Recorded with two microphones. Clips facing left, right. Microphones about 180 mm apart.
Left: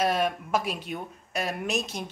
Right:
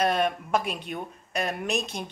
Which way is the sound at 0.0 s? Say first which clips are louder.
Right 1 dB; 5° left (ahead or behind).